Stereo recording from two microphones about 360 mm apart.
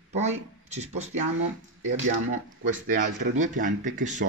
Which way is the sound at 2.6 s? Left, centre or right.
Right.